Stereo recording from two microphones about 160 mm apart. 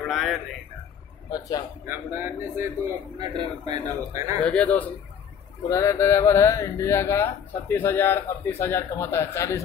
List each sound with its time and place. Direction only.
0.1 s speech: centre (ahead or behind)
1.9 s speech: 15° right (ahead or behind)
4.4 s speech: 5° left (ahead or behind)